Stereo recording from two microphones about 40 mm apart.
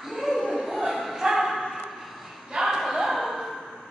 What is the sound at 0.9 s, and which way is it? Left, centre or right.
Bow-wow, centre.